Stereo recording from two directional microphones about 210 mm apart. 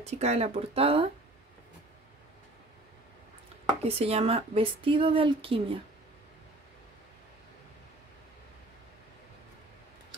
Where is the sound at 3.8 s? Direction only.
30° right (ahead or behind).